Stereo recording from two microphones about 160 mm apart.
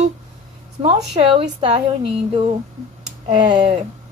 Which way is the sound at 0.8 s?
35° right (ahead or behind).